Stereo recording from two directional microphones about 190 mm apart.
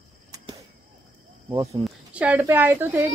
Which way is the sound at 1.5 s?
20° right (ahead or behind).